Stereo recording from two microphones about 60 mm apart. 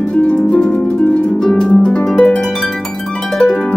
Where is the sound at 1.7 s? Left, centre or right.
Left.